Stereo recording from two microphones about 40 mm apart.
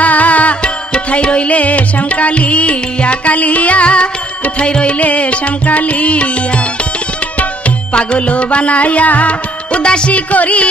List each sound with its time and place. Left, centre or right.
0.0 s music: left
7.9 s music: left